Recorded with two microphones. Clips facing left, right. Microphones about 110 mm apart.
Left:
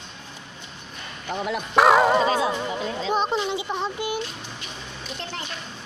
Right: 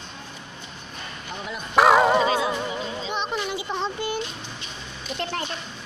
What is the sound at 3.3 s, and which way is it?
Speech, 20° left (ahead or behind).